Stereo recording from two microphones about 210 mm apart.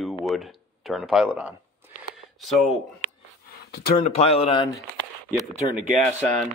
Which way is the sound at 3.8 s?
30° left (ahead or behind).